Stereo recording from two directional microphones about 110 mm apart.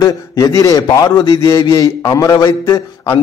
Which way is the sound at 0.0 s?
30° left (ahead or behind).